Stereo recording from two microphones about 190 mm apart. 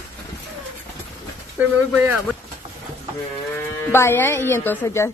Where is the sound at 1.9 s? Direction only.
5° right (ahead or behind).